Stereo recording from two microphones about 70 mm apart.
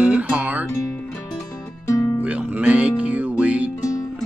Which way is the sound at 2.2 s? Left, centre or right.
Right.